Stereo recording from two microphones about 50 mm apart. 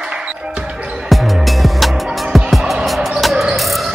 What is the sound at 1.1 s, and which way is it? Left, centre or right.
Music, centre.